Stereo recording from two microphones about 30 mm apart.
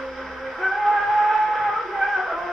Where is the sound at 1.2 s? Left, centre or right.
Centre.